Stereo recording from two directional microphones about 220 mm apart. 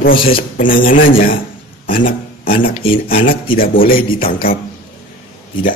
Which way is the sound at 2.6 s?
25° left (ahead or behind).